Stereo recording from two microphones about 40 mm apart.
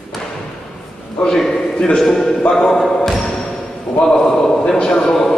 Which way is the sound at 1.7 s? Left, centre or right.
Left.